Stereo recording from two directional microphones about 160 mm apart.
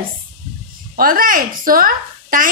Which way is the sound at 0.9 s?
60° right (ahead or behind).